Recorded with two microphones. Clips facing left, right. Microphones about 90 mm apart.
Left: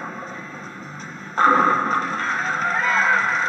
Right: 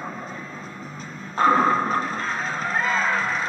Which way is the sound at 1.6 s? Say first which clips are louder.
Left 2 dB; 40° left (ahead or behind).